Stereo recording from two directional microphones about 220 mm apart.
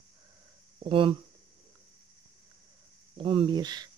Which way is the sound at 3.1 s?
25° right (ahead or behind).